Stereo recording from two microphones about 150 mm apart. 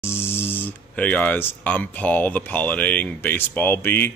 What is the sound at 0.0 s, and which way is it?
Speech, 15° left (ahead or behind).